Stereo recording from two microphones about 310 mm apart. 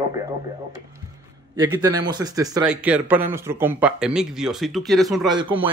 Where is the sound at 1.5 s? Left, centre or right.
Centre.